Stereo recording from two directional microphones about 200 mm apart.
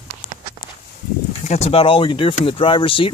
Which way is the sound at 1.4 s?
35° left (ahead or behind).